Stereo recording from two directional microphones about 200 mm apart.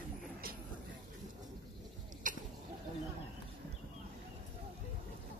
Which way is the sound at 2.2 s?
40° right (ahead or behind).